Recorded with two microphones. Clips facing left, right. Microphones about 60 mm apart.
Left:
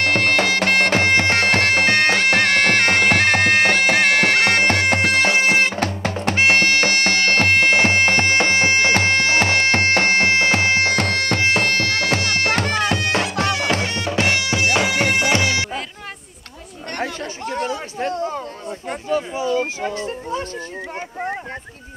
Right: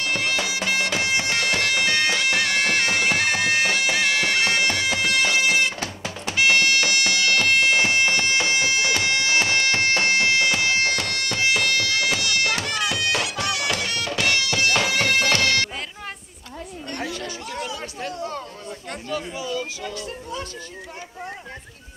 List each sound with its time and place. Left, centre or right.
0.0 s bagpipes: left; by 15.7 s centre
17.0 s chatter: left
19.0 s music: left